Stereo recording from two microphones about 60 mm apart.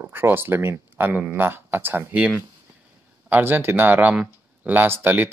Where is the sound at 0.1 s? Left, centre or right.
Right.